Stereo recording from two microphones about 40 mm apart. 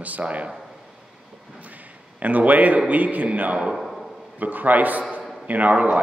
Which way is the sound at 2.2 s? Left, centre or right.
Right.